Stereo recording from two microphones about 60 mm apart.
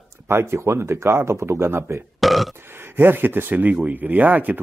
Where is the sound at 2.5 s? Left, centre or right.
Right.